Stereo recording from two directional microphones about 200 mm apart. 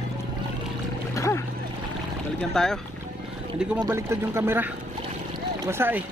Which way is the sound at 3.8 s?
15° right (ahead or behind).